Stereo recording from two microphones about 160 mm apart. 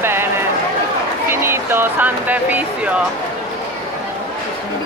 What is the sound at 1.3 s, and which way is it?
Speech, 15° right (ahead or behind).